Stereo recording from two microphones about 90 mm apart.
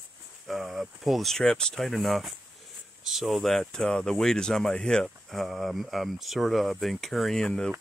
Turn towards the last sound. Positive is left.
turn(degrees=5)  # may be behind; listen again after turning